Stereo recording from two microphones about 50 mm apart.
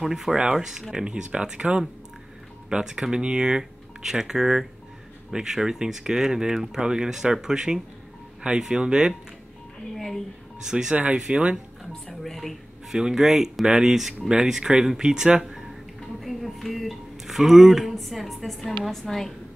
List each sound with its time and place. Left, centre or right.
0.0 s speech: centre
9.9 s music: centre
10.6 s speech: centre
11.5 s speech: centre
12.8 s speech: centre
15.7 s speech: centre